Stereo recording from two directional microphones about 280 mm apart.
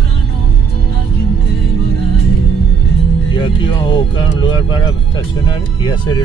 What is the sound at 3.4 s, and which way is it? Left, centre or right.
Music, centre.